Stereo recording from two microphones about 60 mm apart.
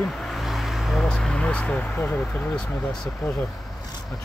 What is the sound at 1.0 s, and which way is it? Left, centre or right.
Speech, centre.